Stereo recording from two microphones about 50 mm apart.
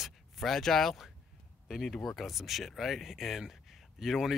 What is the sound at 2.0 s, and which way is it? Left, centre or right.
Speech, centre.